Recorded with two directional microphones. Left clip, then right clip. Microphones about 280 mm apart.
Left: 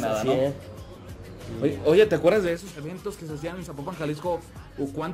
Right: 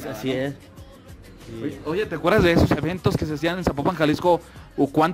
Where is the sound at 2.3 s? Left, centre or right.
Right.